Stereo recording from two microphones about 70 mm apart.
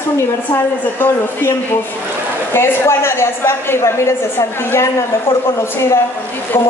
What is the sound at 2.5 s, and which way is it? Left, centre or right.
A woman's voice, left.